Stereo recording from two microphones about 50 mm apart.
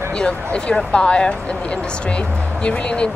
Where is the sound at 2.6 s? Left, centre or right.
Left.